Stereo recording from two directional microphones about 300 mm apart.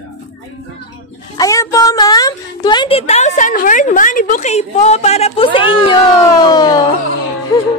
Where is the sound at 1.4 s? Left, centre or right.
Centre.